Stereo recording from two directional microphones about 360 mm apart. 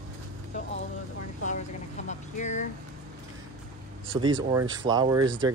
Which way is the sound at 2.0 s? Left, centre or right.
Centre.